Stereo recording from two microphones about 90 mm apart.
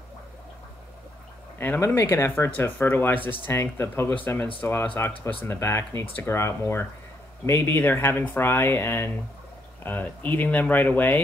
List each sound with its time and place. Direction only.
1.6 s speech: 25° left (ahead or behind)